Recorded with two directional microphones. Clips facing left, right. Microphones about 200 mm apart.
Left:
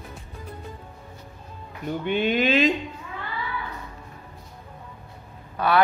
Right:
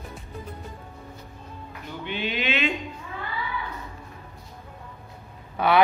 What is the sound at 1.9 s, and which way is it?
Speech, 50° left (ahead or behind).